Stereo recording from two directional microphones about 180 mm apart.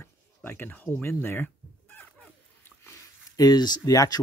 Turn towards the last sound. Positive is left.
turn(degrees=20)  # may be behind; listen again after turning